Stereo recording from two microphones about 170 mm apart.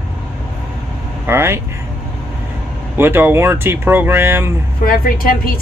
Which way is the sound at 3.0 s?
10° right (ahead or behind).